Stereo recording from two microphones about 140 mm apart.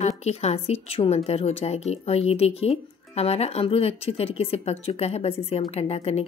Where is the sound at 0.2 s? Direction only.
50° left (ahead or behind).